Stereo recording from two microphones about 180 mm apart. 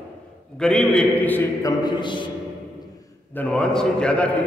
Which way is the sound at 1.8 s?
25° left (ahead or behind).